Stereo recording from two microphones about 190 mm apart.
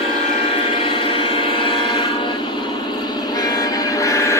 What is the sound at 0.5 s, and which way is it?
Train, 30° left (ahead or behind).